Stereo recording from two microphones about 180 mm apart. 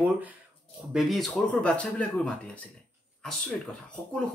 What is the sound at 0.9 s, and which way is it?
Speech, centre (ahead or behind).